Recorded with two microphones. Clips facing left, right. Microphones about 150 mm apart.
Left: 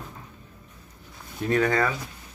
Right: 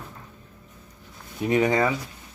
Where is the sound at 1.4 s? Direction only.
15° right (ahead or behind).